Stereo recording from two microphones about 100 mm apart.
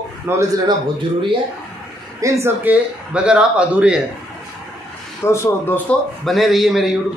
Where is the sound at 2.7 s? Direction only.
10° right (ahead or behind).